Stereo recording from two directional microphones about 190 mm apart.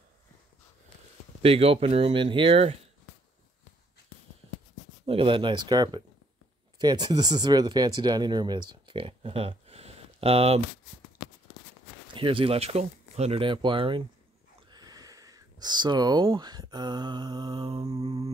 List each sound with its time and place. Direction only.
1.4 s speech: 30° right (ahead or behind)
5.0 s speech: 30° right (ahead or behind)
12.1 s speech: 25° right (ahead or behind)